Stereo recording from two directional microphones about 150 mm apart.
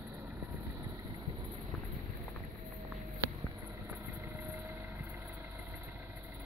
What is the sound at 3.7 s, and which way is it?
Vehicle, 15° right (ahead or behind).